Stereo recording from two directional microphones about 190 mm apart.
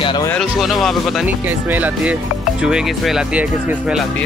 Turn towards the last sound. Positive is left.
turn(degrees=-5)  # may be behind; listen again after turning